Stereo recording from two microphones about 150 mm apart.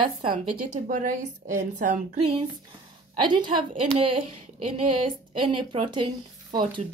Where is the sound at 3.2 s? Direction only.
30° right (ahead or behind).